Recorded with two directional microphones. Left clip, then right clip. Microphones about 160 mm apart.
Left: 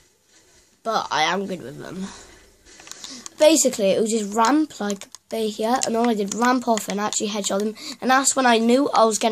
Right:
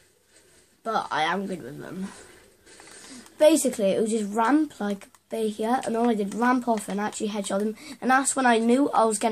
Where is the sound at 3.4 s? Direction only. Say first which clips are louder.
Left 3 dB; 40° left (ahead or behind).